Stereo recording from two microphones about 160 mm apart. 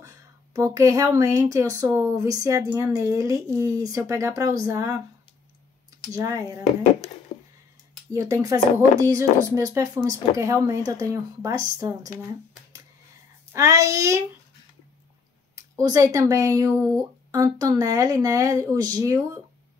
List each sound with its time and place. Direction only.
0.6 s speech: 20° right (ahead or behind)
6.1 s speech: 20° right (ahead or behind)
8.1 s speech: 20° right (ahead or behind)
13.5 s speech: 20° right (ahead or behind)
15.8 s speech: 20° right (ahead or behind)